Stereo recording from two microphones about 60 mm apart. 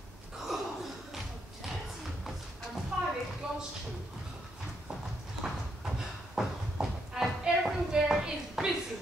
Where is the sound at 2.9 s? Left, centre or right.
Centre.